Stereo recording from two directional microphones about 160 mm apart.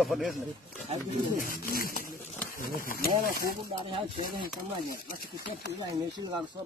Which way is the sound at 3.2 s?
65° left (ahead or behind).